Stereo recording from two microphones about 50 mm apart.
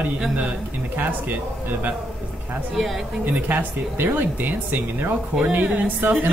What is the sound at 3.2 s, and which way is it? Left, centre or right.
Speech, right.